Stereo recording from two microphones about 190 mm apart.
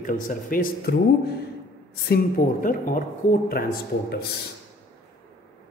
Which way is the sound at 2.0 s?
50° left (ahead or behind).